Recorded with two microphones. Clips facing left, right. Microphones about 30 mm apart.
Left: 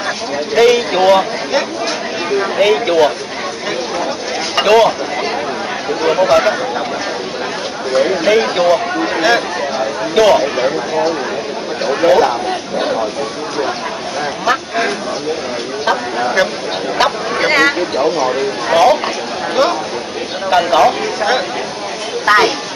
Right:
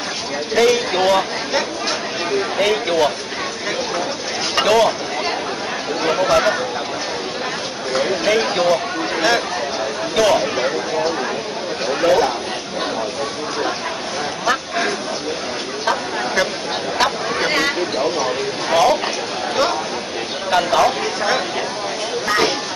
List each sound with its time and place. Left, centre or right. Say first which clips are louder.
0.6 s speech: left 5 dB; centre
4.6 s speech: left 5 dB; centre
7.9 s speech: left 5 dB; centre
14.4 s speech: left 4 dB; centre
22.3 s speech: left 9 dB; left